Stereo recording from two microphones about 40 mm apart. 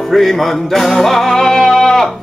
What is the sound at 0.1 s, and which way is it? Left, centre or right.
Music, centre.